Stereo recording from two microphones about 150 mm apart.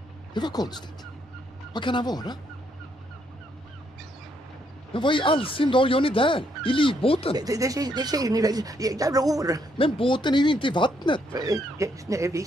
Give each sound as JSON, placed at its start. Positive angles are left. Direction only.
{"t": 0.3, "sound": "speech", "side_deg": 30}
{"t": 4.9, "sound": "speech", "side_deg": 35}
{"t": 7.3, "sound": "speech", "side_deg": -20}
{"t": 9.8, "sound": "speech", "side_deg": 35}
{"t": 11.3, "sound": "speech", "side_deg": -25}